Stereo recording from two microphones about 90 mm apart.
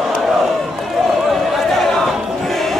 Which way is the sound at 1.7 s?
Centre (ahead or behind).